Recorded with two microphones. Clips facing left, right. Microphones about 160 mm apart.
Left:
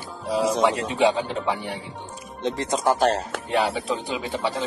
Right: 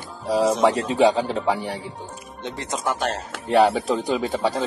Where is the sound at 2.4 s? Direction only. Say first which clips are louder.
Left 4 dB; 35° left (ahead or behind).